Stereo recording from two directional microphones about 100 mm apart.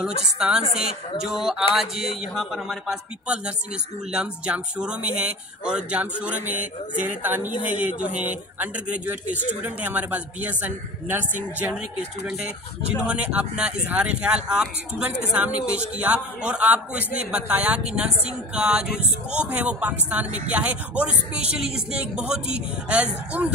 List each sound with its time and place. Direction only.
0.0 s speech: 5° right (ahead or behind)
13.0 s speech: 10° right (ahead or behind)